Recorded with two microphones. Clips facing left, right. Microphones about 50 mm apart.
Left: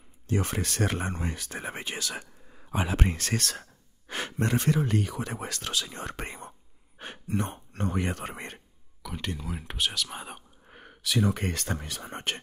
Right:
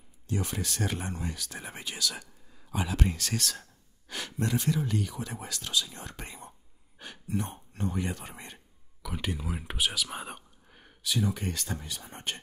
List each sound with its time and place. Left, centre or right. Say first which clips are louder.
0.3 s speech: left 4 dB; left
7.0 s a sound: left 4 dB; left
7.3 s speech: left 3 dB; left
9.0 s speech: even; centre
10.8 s speech: left 3 dB; left